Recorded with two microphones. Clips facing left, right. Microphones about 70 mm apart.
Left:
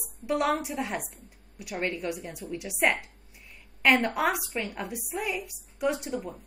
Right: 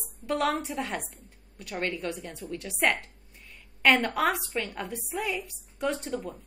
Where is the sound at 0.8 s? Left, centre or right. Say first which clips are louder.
Left 1 dB; centre.